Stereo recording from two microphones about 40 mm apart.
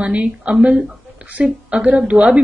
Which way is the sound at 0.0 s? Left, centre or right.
Right.